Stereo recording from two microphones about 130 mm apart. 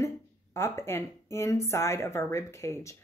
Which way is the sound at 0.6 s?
20° left (ahead or behind).